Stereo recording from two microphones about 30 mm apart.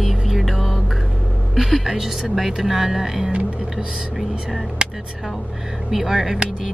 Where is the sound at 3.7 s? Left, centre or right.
Right.